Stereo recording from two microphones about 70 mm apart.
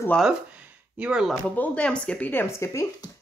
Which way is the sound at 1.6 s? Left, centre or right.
Centre.